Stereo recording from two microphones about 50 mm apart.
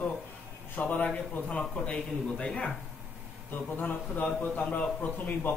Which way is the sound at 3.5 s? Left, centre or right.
Left.